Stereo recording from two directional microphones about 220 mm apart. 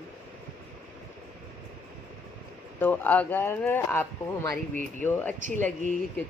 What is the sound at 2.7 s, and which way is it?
Speech, 10° left (ahead or behind).